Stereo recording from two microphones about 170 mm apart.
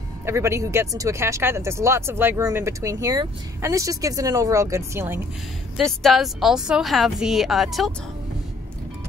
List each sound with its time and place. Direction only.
0.2 s speech: 15° right (ahead or behind)
5.8 s speech: centre (ahead or behind)